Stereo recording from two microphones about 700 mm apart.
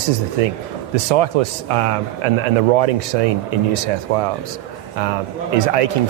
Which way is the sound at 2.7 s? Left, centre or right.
Right.